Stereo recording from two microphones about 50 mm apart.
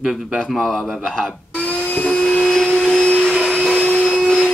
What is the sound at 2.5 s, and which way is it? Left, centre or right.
Vacuum cleaner, centre.